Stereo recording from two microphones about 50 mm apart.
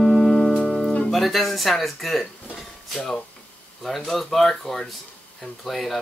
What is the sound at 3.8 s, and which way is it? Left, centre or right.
Speech, centre.